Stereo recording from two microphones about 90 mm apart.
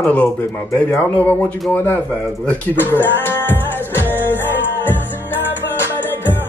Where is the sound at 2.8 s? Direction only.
20° left (ahead or behind).